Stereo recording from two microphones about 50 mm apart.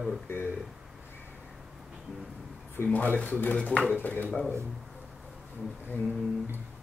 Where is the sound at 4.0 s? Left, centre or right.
Left.